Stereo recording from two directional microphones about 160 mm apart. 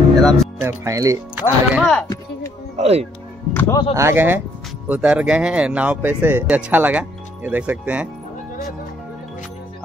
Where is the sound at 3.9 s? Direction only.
15° right (ahead or behind).